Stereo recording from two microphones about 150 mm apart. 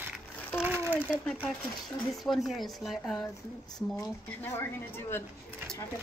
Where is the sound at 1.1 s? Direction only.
5° left (ahead or behind).